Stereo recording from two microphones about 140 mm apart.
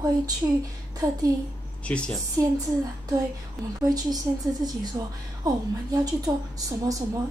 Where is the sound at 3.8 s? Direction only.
25° right (ahead or behind).